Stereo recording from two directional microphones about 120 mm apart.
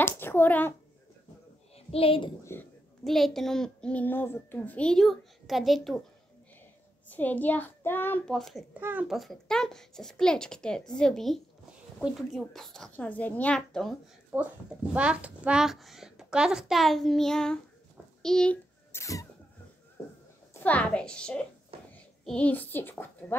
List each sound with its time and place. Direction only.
0.0 s a sound: 20° left (ahead or behind)
1.9 s a child's voice: 50° left (ahead or behind)
2.4 s a sound: 20° left (ahead or behind)
3.0 s a child's voice: centre (ahead or behind)
7.1 s a child's voice: 15° left (ahead or behind)
8.3 s a child's voice: centre (ahead or behind)
8.7 s a child's voice: 15° right (ahead or behind)
9.0 s a child's voice: centre (ahead or behind)
14.3 s a child's voice: 5° right (ahead or behind)
18.9 s rodents: 25° left (ahead or behind)
20.5 s a child's voice: 10° left (ahead or behind)